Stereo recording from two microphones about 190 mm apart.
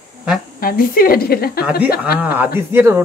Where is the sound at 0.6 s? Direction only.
50° left (ahead or behind).